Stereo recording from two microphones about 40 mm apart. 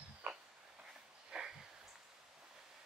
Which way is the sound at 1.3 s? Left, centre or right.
Centre.